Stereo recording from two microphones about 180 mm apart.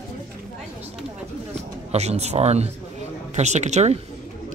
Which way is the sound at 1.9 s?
35° right (ahead or behind).